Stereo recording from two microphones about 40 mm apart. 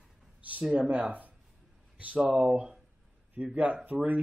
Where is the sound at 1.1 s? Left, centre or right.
Right.